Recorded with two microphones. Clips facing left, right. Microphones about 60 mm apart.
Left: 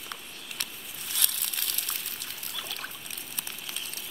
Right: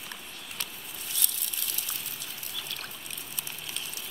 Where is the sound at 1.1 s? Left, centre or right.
Left.